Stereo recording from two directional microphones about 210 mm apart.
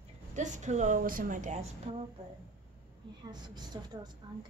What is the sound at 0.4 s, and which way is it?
A woman's voice, 35° right (ahead or behind).